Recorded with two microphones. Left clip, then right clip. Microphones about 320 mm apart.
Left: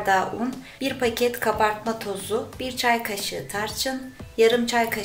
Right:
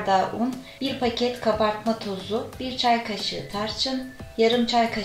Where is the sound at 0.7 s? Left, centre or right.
Left.